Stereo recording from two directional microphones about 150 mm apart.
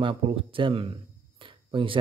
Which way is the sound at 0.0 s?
35° right (ahead or behind).